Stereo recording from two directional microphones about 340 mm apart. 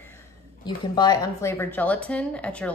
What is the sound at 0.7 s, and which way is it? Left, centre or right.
A woman's voice, centre.